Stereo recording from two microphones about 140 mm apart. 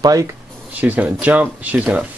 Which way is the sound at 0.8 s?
10° right (ahead or behind).